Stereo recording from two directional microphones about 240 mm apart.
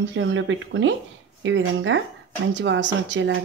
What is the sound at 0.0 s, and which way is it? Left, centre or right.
Speech, right.